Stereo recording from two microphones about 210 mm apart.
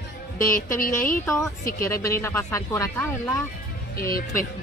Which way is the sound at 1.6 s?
45° left (ahead or behind).